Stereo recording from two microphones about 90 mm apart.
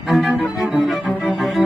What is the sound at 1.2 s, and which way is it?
Cello, centre (ahead or behind).